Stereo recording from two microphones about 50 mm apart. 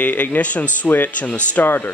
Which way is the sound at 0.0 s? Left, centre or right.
Left.